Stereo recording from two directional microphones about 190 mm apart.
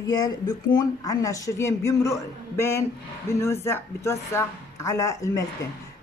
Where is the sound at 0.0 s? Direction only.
20° left (ahead or behind).